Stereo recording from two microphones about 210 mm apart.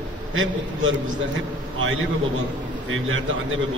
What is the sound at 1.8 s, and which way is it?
A man's voice, 70° right (ahead or behind).